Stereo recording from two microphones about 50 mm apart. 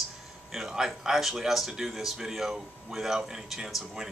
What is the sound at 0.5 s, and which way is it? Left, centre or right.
Speech, centre.